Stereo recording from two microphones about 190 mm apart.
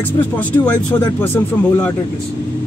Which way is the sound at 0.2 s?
10° left (ahead or behind).